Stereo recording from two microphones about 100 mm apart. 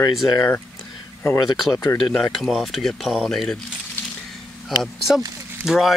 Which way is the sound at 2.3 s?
Centre (ahead or behind).